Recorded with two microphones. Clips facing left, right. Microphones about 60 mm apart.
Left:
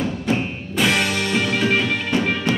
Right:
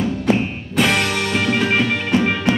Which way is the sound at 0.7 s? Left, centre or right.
Centre.